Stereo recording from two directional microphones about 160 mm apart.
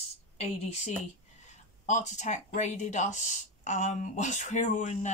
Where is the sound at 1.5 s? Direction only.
45° left (ahead or behind).